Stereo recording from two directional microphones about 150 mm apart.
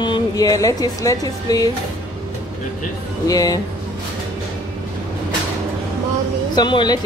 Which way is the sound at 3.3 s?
25° left (ahead or behind).